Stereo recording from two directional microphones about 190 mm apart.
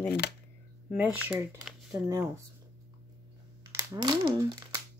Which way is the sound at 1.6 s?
Centre (ahead or behind).